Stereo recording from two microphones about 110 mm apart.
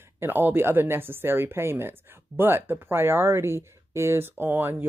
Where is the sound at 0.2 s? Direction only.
20° right (ahead or behind).